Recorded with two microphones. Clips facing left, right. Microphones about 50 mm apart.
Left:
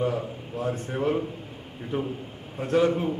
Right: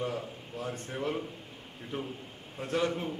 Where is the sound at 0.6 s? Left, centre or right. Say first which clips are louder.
Left 8 dB; centre.